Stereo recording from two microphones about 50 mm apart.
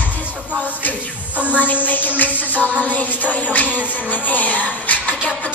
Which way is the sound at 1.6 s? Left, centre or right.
Left.